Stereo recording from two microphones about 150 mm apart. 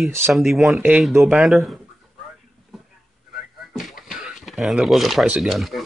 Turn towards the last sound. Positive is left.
turn(degrees=0)  # may be behind; listen again after turning